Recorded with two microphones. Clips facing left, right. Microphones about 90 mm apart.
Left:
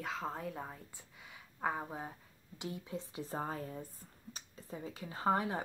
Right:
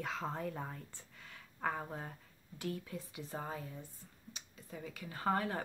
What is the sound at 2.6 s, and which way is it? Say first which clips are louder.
A woman's voice: even; 20° left (ahead or behind).